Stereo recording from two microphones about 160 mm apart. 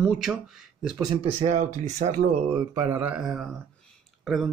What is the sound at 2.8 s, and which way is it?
Speech, 10° right (ahead or behind).